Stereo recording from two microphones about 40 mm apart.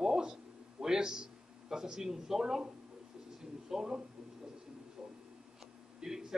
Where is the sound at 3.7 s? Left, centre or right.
Centre.